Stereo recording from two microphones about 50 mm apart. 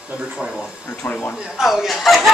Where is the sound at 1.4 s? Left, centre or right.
Centre.